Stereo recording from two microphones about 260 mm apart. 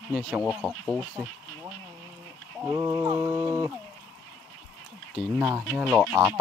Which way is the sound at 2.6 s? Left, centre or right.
Centre.